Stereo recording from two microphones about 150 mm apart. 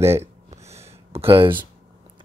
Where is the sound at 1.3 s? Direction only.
35° right (ahead or behind).